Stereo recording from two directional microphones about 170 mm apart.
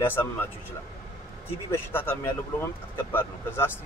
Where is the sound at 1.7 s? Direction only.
10° left (ahead or behind).